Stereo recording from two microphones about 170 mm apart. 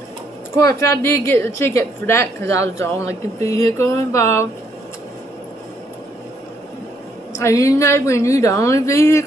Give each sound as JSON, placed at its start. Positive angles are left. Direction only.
{"t": 0.6, "sound": "a woman's voice", "side_deg": 20}
{"t": 7.3, "sound": "a woman's voice", "side_deg": 20}